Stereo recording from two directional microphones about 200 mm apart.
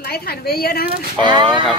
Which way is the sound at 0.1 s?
50° left (ahead or behind).